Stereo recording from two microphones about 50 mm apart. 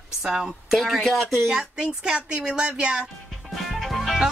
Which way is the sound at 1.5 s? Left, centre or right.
Centre.